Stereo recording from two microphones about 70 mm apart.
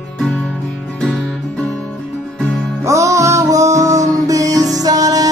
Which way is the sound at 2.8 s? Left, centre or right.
Right.